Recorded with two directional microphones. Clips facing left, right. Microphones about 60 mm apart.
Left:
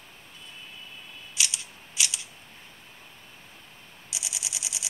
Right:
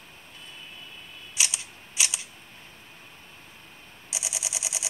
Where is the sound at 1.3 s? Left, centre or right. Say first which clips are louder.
Right 1 dB; right.